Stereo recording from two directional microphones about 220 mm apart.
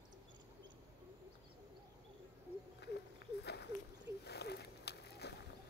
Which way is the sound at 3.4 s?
50° left (ahead or behind).